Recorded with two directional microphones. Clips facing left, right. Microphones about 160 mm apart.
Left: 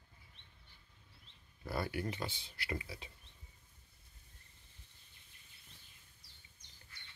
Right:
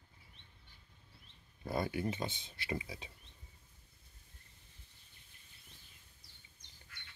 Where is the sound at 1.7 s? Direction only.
20° right (ahead or behind).